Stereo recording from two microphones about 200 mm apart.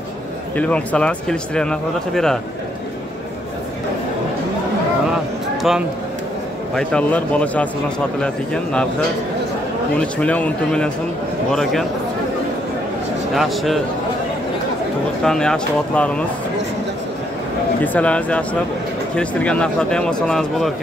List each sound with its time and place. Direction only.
0.6 s speech: 5° left (ahead or behind)
5.6 s speech: centre (ahead or behind)
9.9 s speech: 5° left (ahead or behind)
13.3 s speech: centre (ahead or behind)
15.2 s speech: 5° left (ahead or behind)
17.8 s speech: 5° left (ahead or behind)